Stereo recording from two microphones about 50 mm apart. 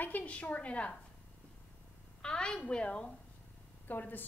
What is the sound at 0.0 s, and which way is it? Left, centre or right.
Speech, left.